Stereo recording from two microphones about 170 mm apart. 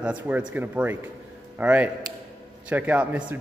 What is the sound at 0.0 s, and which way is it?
Speech, 5° right (ahead or behind).